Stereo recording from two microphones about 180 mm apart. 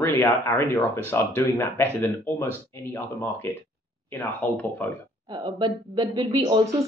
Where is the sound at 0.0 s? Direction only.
15° left (ahead or behind).